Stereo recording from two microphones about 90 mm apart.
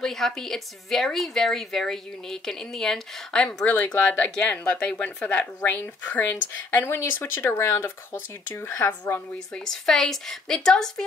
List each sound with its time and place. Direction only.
0.0 s a woman's voice: 5° left (ahead or behind)
3.6 s speech: 20° left (ahead or behind)
9.7 s a woman's voice: 5° left (ahead or behind)